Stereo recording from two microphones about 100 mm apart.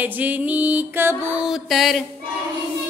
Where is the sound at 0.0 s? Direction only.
15° right (ahead or behind).